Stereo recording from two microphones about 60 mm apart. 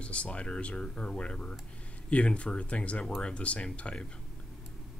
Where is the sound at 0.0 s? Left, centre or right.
Centre.